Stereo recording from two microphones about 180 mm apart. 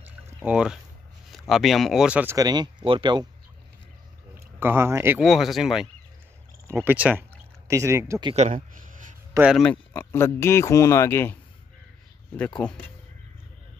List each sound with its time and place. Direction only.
0.4 s speech: 5° right (ahead or behind)
2.3 s speech: 25° right (ahead or behind)
4.6 s speech: 10° right (ahead or behind)
5.2 s speech: centre (ahead or behind)
8.4 s a sound: 45° right (ahead or behind)
9.6 s speech: 10° left (ahead or behind)
12.6 s speech: 10° left (ahead or behind)